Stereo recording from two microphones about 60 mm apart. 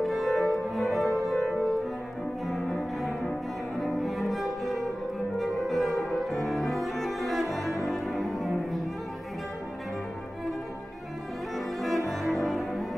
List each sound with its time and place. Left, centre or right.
0.0 s cello: centre
0.3 s music: centre
2.4 s cello: centre
11.5 s bowed string instrument: centre
12.1 s cello: centre